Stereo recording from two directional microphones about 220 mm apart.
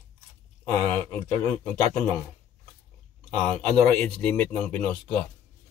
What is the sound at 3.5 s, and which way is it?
Speech, 30° right (ahead or behind).